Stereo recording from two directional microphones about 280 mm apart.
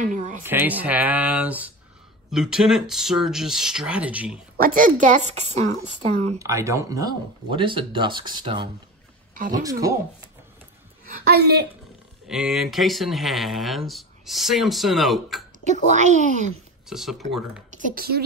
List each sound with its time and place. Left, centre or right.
0.0 s a woman's voice: right
0.4 s speech: centre
4.6 s a woman's voice: right
6.3 s speech: centre
11.1 s a woman's voice: right
12.3 s speech: centre
15.9 s a woman's voice: right
16.9 s speech: centre
17.6 s a woman's voice: right